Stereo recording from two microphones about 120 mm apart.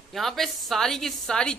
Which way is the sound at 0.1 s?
Centre (ahead or behind).